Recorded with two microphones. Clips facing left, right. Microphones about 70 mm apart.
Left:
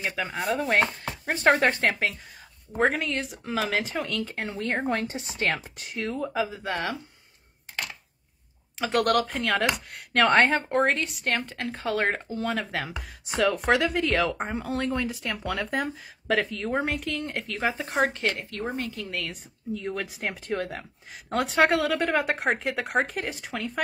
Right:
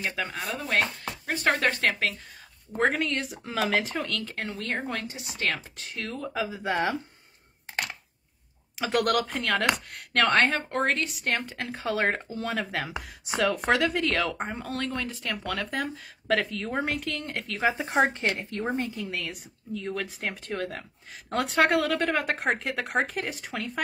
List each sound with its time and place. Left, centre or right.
0.0 s chopping: centre
0.6 s speech: left
2.7 s speech: centre
4.5 s speech: left
6.3 s speech: centre
6.6 s a woman's voice: right
8.7 s speech: centre
10.3 s speech: centre
10.8 s speech: centre
18.0 s a woman's voice: right
19.0 s a woman's voice: centre
19.7 s speech: centre